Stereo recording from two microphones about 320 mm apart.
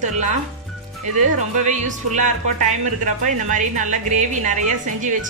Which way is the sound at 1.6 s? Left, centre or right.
Right.